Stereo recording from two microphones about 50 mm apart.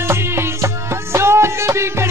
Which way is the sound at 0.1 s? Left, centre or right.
Right.